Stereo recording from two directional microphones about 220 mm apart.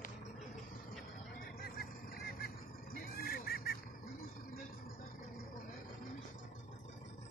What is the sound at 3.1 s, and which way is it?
Goose, 45° left (ahead or behind).